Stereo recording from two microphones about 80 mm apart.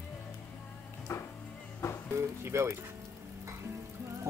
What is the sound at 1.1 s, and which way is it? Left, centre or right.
Music, left.